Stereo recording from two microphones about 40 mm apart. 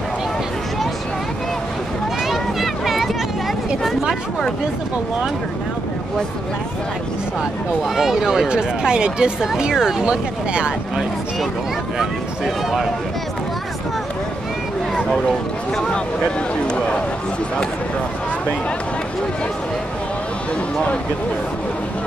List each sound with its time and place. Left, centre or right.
2.2 s a sound: centre
7.9 s speech: centre
10.0 s speech: right
12.0 s speech: centre
15.0 s speech: centre